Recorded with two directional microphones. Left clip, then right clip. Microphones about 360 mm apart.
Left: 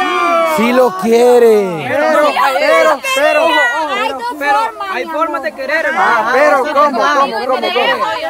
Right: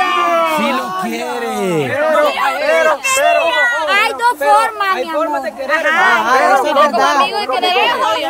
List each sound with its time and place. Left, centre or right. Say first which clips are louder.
0.6 s speech: left 5 dB; centre
2.0 s a sound: left 4 dB; left
6.7 s speech: even; right